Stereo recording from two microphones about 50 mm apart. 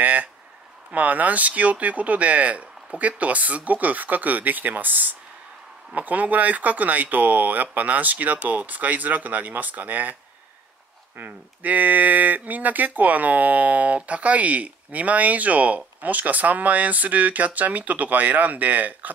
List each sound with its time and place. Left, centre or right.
0.0 s a sound: right
0.9 s speech: right
11.1 s speech: right